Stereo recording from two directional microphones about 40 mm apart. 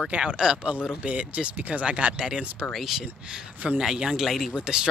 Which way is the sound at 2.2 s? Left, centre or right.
Right.